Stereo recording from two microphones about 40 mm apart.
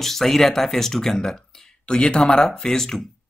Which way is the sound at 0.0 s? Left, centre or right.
Centre.